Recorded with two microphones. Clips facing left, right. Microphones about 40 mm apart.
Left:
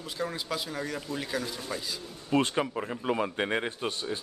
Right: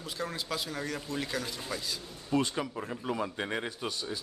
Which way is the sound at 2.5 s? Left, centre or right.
Left.